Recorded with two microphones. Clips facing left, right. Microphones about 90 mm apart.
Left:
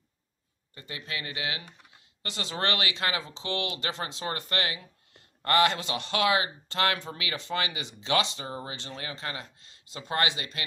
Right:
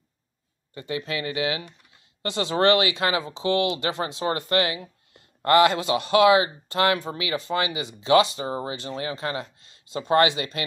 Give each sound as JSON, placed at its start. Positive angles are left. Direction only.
{"t": 0.7, "sound": "speech", "side_deg": -25}
{"t": 9.2, "sound": "speech", "side_deg": -30}